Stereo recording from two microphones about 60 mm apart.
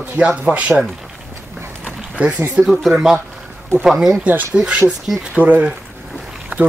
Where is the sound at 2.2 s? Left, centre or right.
Right.